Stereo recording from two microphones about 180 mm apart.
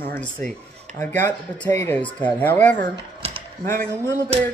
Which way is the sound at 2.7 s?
35° right (ahead or behind).